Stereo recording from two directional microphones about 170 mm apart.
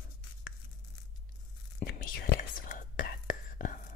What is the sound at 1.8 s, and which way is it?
Whispering, 55° left (ahead or behind).